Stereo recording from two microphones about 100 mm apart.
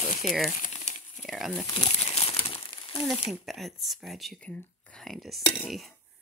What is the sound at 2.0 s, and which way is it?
Crumpling, 80° left.